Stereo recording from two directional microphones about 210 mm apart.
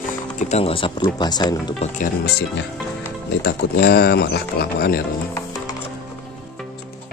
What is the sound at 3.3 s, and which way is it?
Speech, 50° left (ahead or behind).